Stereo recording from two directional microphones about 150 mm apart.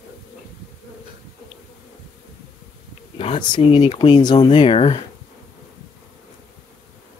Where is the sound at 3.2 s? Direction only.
35° left (ahead or behind).